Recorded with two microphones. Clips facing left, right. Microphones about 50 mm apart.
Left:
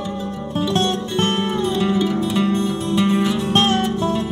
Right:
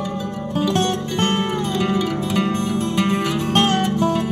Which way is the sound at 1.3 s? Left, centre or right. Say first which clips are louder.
Left 1 dB; right.